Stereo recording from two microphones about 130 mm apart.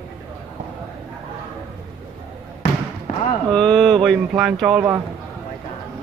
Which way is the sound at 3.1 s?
90° left.